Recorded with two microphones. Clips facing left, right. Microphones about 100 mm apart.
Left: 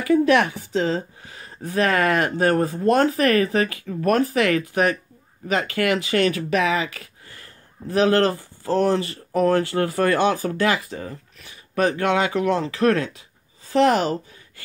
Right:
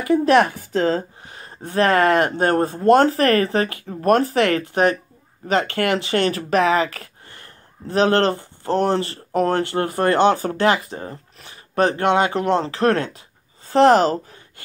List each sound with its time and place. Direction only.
0.0 s speech: 35° right (ahead or behind)
0.5 s a woman's voice: 50° right (ahead or behind)
1.2 s speech: 30° right (ahead or behind)